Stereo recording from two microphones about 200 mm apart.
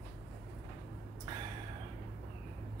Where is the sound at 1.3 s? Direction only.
20° right (ahead or behind).